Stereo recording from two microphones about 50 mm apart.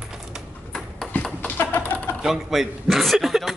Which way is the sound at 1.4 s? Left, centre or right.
Left.